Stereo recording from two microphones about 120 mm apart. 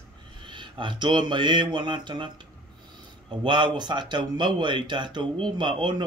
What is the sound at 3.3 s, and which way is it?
Speech, 40° right (ahead or behind).